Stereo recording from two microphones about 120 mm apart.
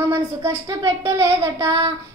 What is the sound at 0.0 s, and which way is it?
Speech, 25° right (ahead or behind).